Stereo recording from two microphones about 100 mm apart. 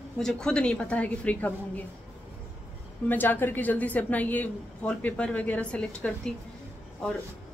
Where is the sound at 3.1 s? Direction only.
20° left (ahead or behind).